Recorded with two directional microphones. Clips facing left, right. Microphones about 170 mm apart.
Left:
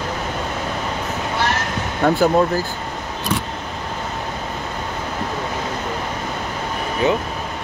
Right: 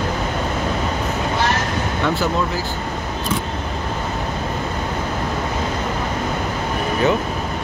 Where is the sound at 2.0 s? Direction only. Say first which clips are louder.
Left 7 dB; 50° left (ahead or behind).